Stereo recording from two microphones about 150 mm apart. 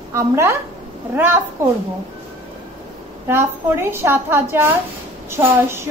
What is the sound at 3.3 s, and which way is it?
A woman's voice, 15° right (ahead or behind).